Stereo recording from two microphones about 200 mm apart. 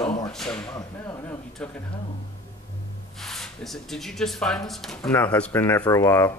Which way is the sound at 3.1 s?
Centre (ahead or behind).